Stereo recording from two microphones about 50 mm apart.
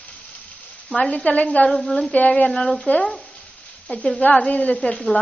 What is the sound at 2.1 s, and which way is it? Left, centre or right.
Speech, left.